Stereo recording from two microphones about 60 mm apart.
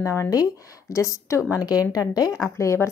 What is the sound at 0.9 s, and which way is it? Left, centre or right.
Speech, left.